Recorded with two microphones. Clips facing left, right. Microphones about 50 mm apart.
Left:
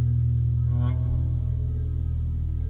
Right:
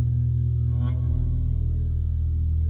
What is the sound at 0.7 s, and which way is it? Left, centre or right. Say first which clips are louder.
Music: even; centre.